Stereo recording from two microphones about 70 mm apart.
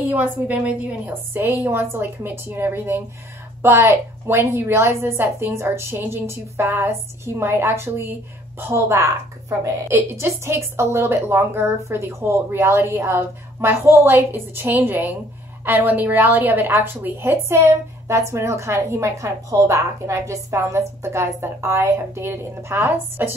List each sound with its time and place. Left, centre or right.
0.1 s a woman's voice: right
1.3 s a woman's voice: right